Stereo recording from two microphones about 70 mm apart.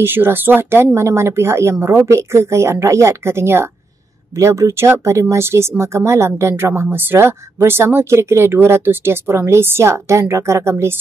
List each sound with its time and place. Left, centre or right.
0.0 s speech: right